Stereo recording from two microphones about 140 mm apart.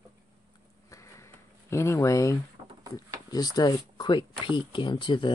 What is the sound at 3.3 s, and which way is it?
Speech, 25° left (ahead or behind).